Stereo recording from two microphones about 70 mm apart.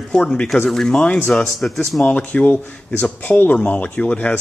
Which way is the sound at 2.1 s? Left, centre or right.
Centre.